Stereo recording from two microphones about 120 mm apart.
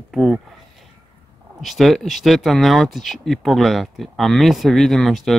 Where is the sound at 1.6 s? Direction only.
Centre (ahead or behind).